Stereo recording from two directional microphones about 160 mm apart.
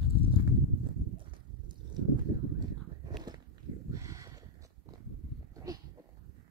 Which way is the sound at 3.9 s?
20° right (ahead or behind).